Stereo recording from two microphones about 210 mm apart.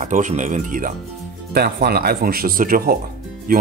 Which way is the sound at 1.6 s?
50° right (ahead or behind).